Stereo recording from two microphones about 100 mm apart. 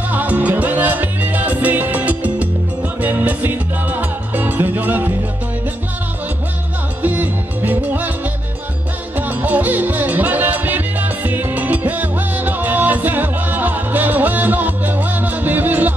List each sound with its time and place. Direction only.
0.1 s music: 15° right (ahead or behind)
7.0 s music: 15° right (ahead or behind)
9.1 s music: 15° right (ahead or behind)